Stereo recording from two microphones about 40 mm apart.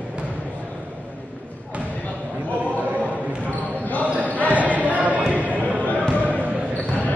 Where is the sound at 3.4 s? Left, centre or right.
Left.